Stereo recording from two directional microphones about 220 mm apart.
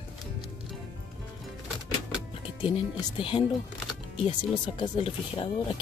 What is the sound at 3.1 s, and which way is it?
Speech, 25° left (ahead or behind).